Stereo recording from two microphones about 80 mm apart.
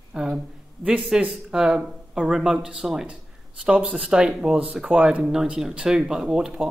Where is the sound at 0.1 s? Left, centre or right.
Centre.